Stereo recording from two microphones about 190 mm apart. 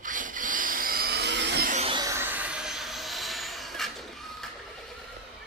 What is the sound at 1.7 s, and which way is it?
Music, 30° right (ahead or behind).